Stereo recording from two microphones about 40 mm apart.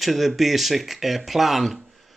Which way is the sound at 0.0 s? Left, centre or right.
Centre.